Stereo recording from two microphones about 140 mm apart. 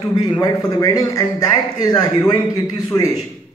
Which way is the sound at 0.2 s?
25° left (ahead or behind).